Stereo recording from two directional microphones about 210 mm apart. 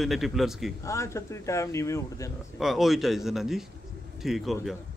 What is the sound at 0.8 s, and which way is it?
Speech, 15° left (ahead or behind).